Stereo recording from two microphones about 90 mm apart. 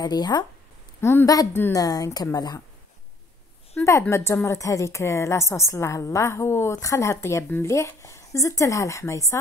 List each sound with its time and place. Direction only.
0.0 s a woman's voice: 50° left (ahead or behind)
3.8 s a sound: 20° left (ahead or behind)
4.1 s a woman's voice: 30° left (ahead or behind)